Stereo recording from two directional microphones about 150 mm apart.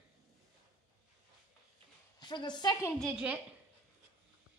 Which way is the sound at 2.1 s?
30° left (ahead or behind).